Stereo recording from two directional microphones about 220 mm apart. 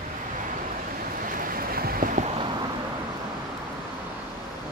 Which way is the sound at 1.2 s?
40° right (ahead or behind).